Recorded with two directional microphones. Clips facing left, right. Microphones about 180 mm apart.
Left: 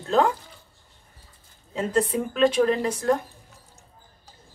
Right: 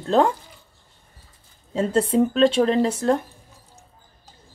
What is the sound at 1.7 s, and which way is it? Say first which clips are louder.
Speech: right 4 dB; 30° right (ahead or behind).